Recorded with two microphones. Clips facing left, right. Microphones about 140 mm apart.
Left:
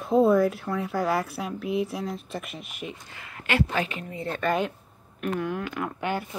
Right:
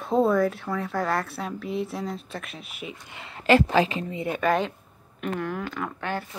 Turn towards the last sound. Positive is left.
turn(degrees=15)  # may be behind; listen again after turning